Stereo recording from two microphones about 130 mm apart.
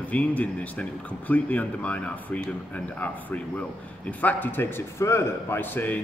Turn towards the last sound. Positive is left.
turn(degrees=15)  # may be behind; listen again after turning